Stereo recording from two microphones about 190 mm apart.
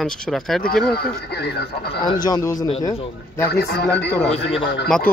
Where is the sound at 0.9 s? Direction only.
55° left (ahead or behind).